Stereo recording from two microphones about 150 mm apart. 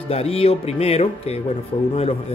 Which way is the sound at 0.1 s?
40° left (ahead or behind).